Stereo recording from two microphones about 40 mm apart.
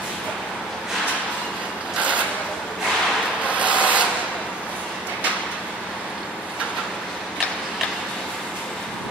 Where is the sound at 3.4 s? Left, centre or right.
Right.